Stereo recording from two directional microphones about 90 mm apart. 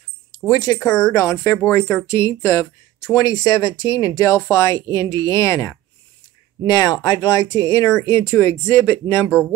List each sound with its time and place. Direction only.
0.5 s speech: 45° left (ahead or behind)
3.3 s speech: 45° left (ahead or behind); by 9.3 s 25° left (ahead or behind)